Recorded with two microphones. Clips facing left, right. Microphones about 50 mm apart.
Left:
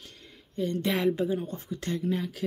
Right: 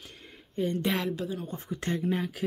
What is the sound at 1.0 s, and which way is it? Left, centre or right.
Speech, left.